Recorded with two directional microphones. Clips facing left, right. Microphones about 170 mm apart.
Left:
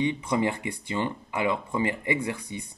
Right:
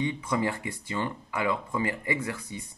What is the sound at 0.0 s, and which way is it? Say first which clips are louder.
Speech: left 3 dB; 25° left (ahead or behind).